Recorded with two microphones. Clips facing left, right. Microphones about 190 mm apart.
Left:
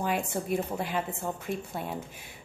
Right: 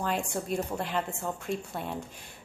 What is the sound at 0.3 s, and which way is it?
A woman's voice, 5° left (ahead or behind).